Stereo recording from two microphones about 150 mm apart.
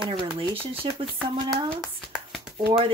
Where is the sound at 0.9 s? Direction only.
35° right (ahead or behind).